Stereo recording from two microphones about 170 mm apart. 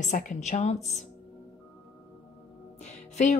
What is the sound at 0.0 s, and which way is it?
Speech, 45° left (ahead or behind).